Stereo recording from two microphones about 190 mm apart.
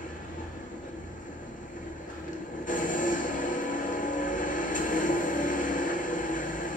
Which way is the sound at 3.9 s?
45° left (ahead or behind).